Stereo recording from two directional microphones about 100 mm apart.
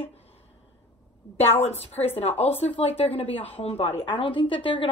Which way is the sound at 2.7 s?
80° left.